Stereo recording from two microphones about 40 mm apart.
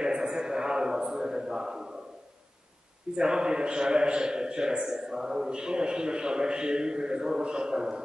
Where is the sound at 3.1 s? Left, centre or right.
Centre.